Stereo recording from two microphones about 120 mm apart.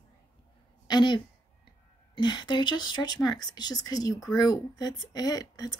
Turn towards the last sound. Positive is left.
turn(degrees=30)  # may be behind; listen again after turning